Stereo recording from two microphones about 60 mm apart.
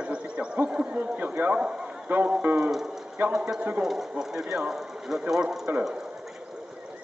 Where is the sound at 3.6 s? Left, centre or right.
Right.